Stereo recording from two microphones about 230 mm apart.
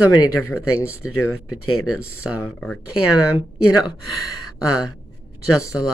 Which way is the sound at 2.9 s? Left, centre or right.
Left.